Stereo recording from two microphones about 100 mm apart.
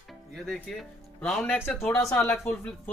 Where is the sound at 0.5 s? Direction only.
5° left (ahead or behind).